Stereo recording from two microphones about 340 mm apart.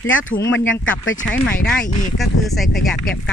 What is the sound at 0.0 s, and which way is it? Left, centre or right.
Speech, left.